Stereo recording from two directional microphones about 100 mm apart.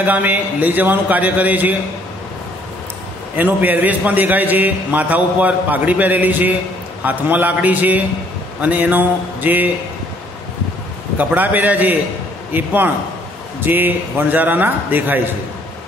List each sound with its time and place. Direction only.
0.0 s a man's voice: 15° right (ahead or behind)
3.3 s a man's voice: 20° right (ahead or behind)
11.1 s a man's voice: 15° right (ahead or behind)